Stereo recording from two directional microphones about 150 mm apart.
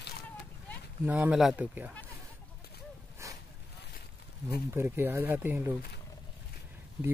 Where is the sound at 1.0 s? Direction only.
10° right (ahead or behind).